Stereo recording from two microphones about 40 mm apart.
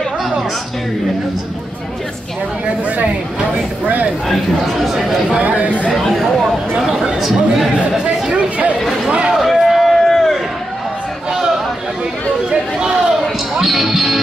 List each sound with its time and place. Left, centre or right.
2.6 s speech: right
4.7 s chatter: centre
5.4 s speech: right
5.9 s a sound: centre
6.8 s a sound: centre
7.2 s chatter: centre
8.3 s chatter: right
9.3 s a sound: centre
11.3 s chatter: centre
12.4 s chatter: right
13.6 s music: centre